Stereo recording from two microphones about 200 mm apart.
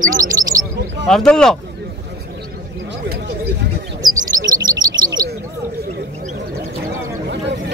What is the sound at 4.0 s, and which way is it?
Bird, 20° right (ahead or behind).